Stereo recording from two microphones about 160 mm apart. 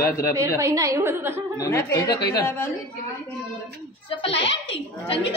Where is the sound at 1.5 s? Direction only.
20° left (ahead or behind).